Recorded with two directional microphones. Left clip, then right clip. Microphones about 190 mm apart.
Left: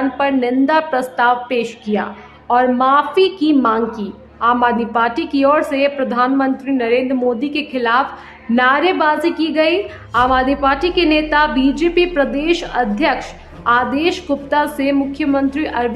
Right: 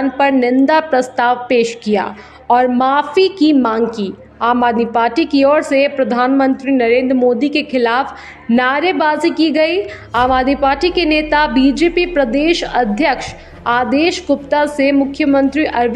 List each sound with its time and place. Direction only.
0.2 s a woman's voice: 20° right (ahead or behind)